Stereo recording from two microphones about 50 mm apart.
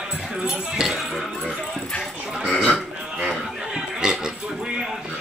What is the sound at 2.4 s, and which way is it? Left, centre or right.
Speech, right.